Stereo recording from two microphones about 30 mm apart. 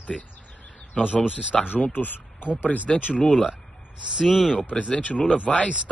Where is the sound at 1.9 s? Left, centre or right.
Left.